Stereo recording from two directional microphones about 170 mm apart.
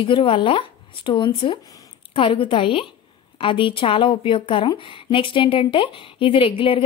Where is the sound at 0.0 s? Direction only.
30° left (ahead or behind).